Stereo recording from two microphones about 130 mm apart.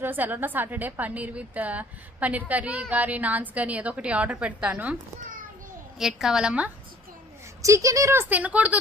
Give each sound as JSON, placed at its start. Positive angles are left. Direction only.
{"t": 0.0, "sound": "a woman's voice", "side_deg": -15}
{"t": 5.9, "sound": "a woman's voice", "side_deg": -5}
{"t": 7.6, "sound": "speech", "side_deg": -25}